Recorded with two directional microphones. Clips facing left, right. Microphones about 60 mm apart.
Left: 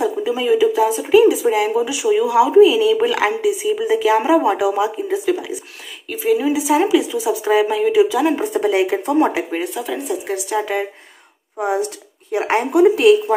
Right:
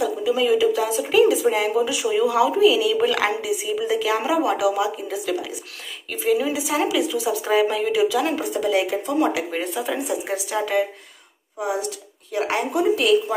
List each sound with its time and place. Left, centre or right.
0.0 s a sound: left
0.4 s speech: centre
1.1 s speech: centre
6.0 s speech: centre
7.2 s speech: centre
7.9 s speech: left
8.4 s speech: left
9.6 s speech: centre
10.6 s speech: centre
11.6 s speech: left